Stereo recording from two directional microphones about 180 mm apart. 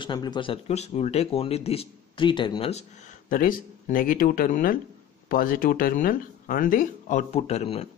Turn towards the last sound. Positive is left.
turn(degrees=35)  # may be behind; listen again after turning